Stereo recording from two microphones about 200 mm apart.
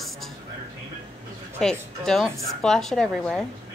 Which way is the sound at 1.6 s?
Centre (ahead or behind).